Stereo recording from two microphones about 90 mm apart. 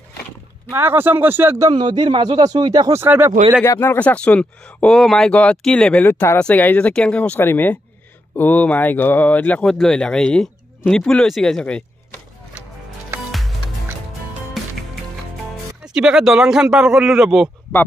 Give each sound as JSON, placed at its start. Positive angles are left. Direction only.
{"t": 0.7, "sound": "speech", "side_deg": -25}
{"t": 1.7, "sound": "a man's voice", "side_deg": -55}
{"t": 2.9, "sound": "speech", "side_deg": -25}
{"t": 3.6, "sound": "speech", "side_deg": 30}
{"t": 9.7, "sound": "speech", "side_deg": 5}
{"t": 15.8, "sound": "speech", "side_deg": -5}